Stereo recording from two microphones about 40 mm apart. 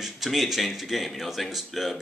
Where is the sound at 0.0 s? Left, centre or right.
Centre.